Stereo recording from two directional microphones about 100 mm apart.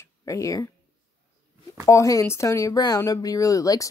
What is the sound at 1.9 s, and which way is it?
Speech, 30° left (ahead or behind).